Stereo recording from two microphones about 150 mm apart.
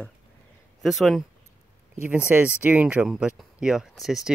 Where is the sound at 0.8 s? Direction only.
Centre (ahead or behind).